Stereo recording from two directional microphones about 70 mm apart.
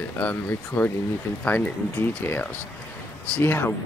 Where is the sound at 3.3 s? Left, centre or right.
Left.